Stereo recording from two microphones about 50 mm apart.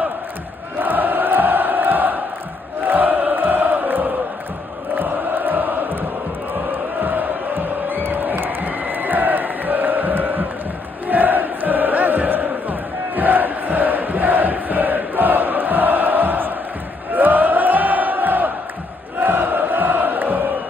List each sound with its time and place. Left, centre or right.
0.7 s crowd: right
2.8 s a sound: right
4.9 s chant: right
7.0 s crowd: right
11.1 s chant: right
17.1 s crowd: right